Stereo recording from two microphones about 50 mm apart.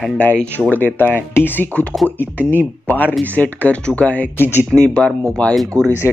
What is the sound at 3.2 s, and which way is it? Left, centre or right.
Speech, left.